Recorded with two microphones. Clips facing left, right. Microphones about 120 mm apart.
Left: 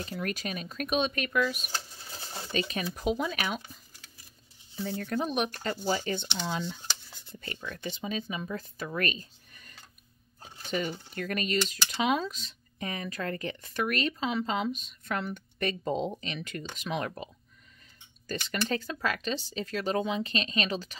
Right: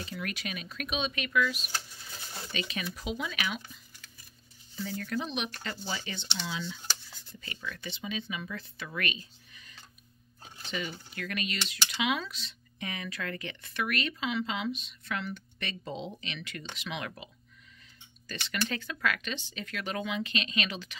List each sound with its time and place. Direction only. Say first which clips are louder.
0.0 s speech: left 4 dB; 40° left (ahead or behind)
1.7 s speech: left 1 dB; 35° left (ahead or behind)